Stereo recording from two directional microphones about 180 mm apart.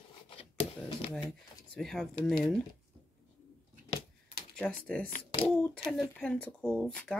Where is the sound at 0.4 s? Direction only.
30° left (ahead or behind).